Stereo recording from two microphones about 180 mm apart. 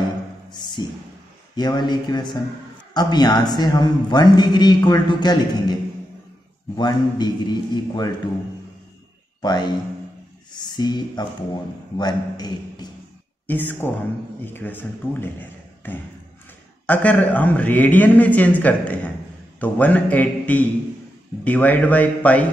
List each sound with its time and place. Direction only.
0.5 s a man's voice: 25° left (ahead or behind)
6.8 s a man's voice: 25° left (ahead or behind)
9.4 s a man's voice: 25° left (ahead or behind)
13.5 s a man's voice: 10° left (ahead or behind)
16.8 s a man's voice: 10° left (ahead or behind)